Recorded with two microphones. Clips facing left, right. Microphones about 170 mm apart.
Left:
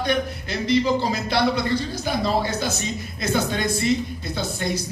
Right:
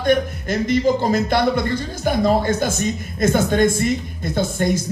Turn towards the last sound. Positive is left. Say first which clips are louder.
# right 6 dB
turn(degrees=-50)  # may be behind; listen again after turning